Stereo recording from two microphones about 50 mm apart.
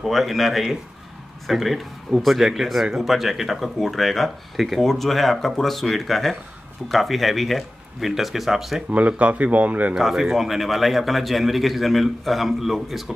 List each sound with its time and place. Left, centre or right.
0.0 s speech: centre
8.9 s a man's voice: right
9.9 s speech: centre